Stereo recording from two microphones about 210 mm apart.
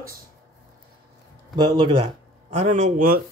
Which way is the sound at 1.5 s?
20° right (ahead or behind).